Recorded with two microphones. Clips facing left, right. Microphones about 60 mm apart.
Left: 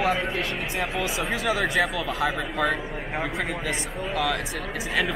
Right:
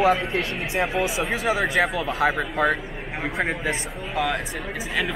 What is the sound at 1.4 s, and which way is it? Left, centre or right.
Speech, right.